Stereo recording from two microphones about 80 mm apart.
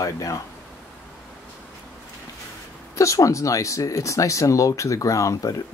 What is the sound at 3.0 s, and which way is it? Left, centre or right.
Speech, left.